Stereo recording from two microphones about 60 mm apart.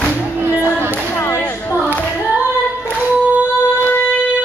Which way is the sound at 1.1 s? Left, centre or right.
Left.